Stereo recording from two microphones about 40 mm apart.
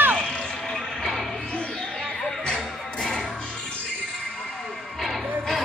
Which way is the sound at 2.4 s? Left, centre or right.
Centre.